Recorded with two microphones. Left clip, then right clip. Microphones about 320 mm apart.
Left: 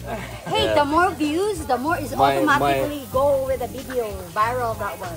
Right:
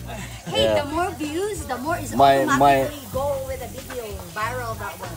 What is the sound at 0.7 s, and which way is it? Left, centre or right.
Speech, centre.